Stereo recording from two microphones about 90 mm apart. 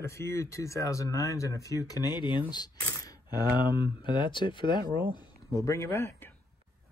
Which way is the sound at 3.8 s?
60° left (ahead or behind).